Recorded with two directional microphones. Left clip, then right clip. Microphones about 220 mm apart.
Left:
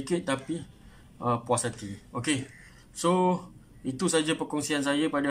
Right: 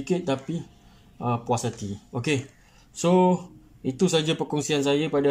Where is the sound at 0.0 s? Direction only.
10° right (ahead or behind).